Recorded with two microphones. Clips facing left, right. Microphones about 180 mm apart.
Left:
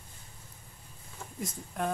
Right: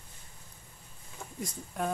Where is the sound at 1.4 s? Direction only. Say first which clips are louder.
Even; centre (ahead or behind).